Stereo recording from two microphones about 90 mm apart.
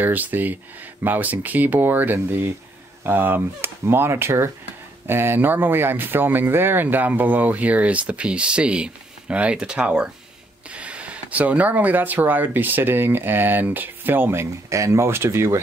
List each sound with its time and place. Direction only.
0.0 s speech: 20° right (ahead or behind)